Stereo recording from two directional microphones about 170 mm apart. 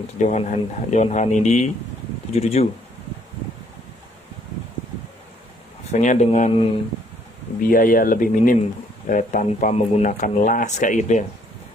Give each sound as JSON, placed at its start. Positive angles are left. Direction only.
{"t": 0.2, "sound": "speech", "side_deg": 45}
{"t": 5.9, "sound": "speech", "side_deg": 45}
{"t": 6.5, "sound": "speech", "side_deg": 30}
{"t": 7.7, "sound": "speech", "side_deg": 55}